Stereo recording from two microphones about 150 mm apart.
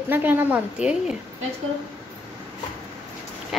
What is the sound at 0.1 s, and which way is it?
A woman's voice, 10° right (ahead or behind).